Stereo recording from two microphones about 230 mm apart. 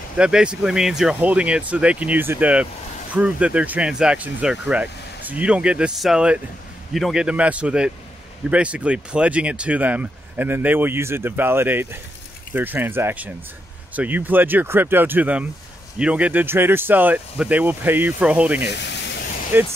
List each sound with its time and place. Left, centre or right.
0.2 s speech: centre
18.7 s spray: left
19.5 s speech: centre